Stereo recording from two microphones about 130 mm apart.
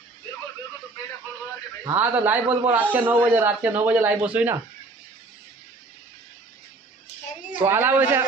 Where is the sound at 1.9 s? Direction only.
15° right (ahead or behind).